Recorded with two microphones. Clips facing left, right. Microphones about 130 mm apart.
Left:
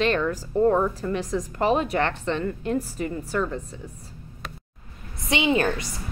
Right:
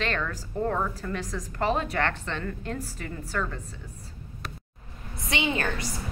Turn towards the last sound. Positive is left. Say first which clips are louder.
# left 6 dB
turn(degrees=20)  # may be behind; listen again after turning